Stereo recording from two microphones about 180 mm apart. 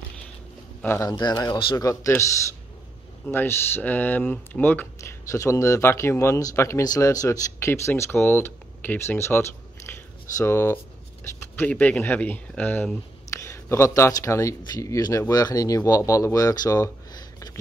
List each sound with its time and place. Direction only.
0.8 s a man's voice: 15° left (ahead or behind)
3.3 s speech: 10° left (ahead or behind)